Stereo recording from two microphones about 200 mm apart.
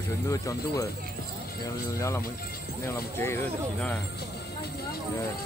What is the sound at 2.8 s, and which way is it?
Speech, 10° left (ahead or behind).